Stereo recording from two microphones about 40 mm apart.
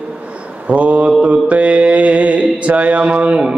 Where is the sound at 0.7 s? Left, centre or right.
Right.